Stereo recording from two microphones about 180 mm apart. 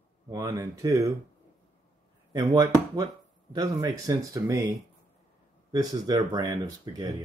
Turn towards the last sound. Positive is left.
turn(degrees=-20)  # may be behind; listen again after turning